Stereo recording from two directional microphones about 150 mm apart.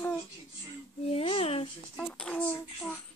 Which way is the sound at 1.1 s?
40° left (ahead or behind).